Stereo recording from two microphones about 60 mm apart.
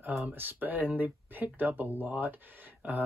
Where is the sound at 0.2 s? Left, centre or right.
Right.